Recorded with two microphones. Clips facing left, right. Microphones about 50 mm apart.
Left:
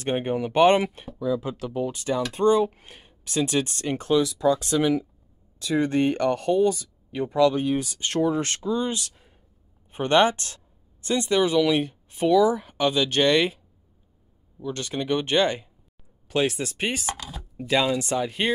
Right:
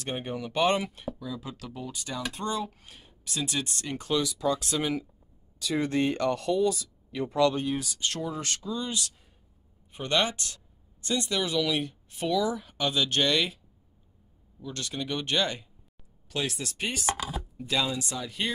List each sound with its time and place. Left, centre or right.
0.0 s speech: left
3.3 s speech: left
4.1 s speech: centre
4.6 s speech: left
14.6 s speech: left
17.2 s chopping: centre
17.6 s speech: left